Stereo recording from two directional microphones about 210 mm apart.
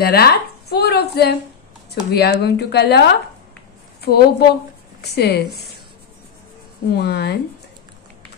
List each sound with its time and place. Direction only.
0.0 s speech: 50° left (ahead or behind)
7.0 s speech: 50° left (ahead or behind)